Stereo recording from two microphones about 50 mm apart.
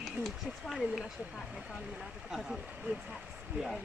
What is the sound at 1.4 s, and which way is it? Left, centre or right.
Speech, centre.